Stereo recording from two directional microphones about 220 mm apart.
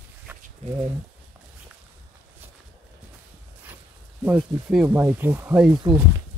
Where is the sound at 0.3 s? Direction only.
10° right (ahead or behind).